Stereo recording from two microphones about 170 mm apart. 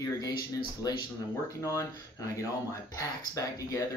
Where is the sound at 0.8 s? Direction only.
20° left (ahead or behind).